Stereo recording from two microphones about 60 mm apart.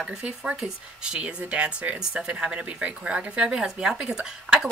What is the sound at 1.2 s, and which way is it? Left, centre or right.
Speech, right.